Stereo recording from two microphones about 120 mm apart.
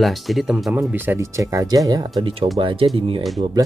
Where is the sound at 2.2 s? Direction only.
50° right (ahead or behind).